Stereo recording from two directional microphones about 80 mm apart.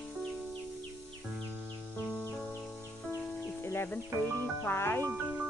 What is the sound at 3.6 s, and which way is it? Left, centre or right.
Music, left.